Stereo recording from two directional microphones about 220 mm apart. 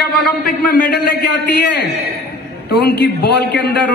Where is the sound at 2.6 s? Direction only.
45° left (ahead or behind).